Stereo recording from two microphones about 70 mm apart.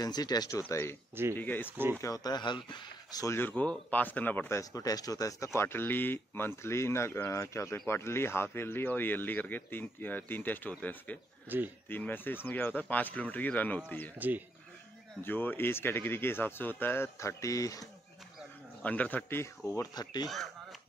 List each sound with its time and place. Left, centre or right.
0.0 s speech: left
0.6 s speech: left
1.3 s speech: left
2.0 s speech: left
3.3 s speech: left
3.5 s speech: left
4.5 s speech: left
11.4 s speech: right
11.9 s speech: left
14.1 s speech: right
15.2 s speech: left
18.8 s speech: left
19.9 s speech: left